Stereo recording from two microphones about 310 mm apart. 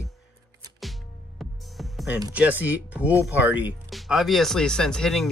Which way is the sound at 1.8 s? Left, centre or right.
Centre.